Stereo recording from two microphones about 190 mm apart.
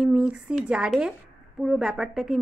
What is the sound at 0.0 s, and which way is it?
A woman's voice, 5° right (ahead or behind).